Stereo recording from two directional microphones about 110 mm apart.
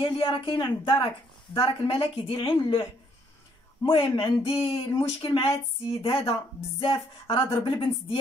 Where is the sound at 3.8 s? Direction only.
50° left (ahead or behind).